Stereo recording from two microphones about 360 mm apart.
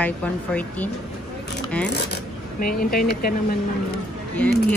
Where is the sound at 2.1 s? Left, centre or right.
Left.